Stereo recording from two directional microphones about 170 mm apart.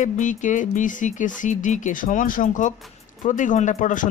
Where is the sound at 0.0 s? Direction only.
45° left (ahead or behind).